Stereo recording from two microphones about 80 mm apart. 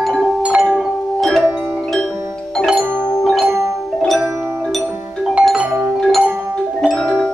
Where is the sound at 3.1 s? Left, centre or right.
Centre.